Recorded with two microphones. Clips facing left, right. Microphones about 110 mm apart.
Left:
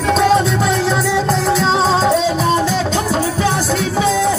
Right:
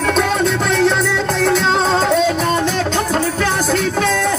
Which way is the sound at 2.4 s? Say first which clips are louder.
Left 1 dB; 60° right (ahead or behind).